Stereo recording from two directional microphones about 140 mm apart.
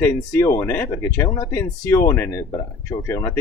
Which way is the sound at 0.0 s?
20° left (ahead or behind).